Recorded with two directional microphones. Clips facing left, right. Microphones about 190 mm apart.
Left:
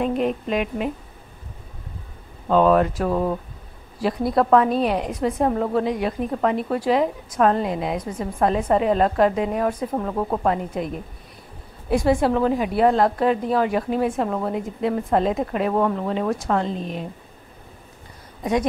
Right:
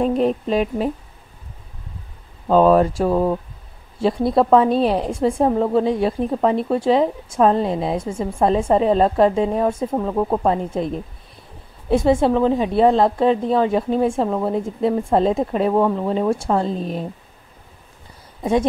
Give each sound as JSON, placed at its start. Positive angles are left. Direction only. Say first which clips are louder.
{"t": 0.0, "sound": "speech", "louder": "right 4 dB", "side_deg": -35}
{"t": 2.4, "sound": "a woman's voice", "louder": "right 3 dB", "side_deg": -35}
{"t": 18.4, "sound": "speech", "louder": "right 3 dB", "side_deg": -25}